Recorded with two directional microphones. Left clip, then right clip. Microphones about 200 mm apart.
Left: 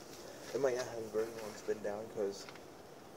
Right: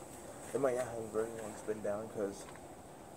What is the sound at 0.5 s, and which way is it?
Speech, 40° left (ahead or behind).